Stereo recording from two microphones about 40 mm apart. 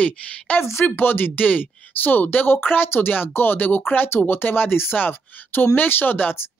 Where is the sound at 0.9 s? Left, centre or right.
Left.